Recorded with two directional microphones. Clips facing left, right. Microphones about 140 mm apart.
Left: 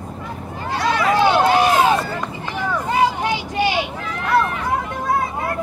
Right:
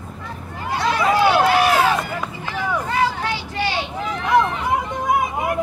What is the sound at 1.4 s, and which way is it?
Run, 20° left (ahead or behind).